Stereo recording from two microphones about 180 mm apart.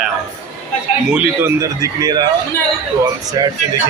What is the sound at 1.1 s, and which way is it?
A man's voice, 10° right (ahead or behind).